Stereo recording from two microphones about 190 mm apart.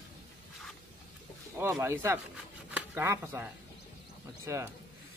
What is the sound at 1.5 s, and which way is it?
Speech, 10° right (ahead or behind).